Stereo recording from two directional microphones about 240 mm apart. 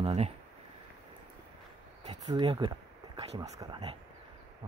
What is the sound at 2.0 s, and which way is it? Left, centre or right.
Speech, right.